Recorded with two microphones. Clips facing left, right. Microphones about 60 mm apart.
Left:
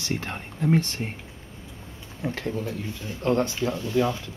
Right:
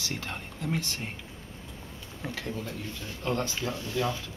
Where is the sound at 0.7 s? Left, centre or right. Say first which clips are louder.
Left 9 dB; left.